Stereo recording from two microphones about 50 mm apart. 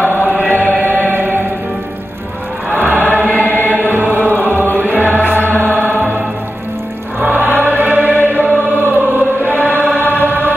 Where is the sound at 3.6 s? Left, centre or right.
Right.